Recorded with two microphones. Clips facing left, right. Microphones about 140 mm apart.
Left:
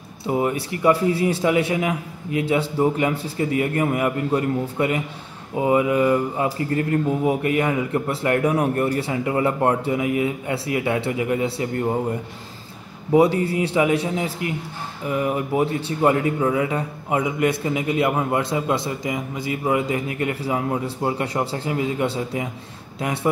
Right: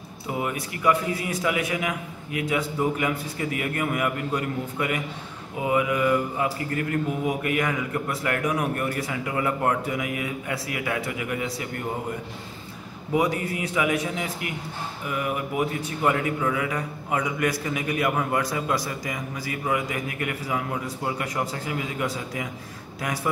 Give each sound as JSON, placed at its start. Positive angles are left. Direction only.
{"t": 0.3, "sound": "a man's voice", "side_deg": 30}
{"t": 13.1, "sound": "a man's voice", "side_deg": 30}